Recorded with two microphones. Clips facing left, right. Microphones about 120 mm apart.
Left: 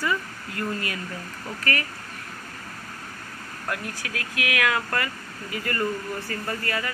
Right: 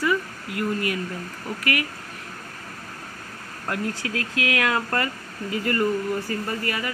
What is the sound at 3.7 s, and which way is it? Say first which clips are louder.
Speech: right 5 dB; 25° right (ahead or behind).